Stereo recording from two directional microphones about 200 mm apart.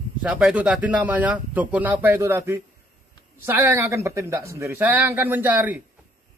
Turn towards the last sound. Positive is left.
turn(degrees=-10)  # may be behind; listen again after turning